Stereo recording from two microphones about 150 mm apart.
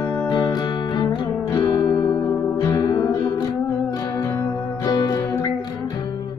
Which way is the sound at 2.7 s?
30° left (ahead or behind).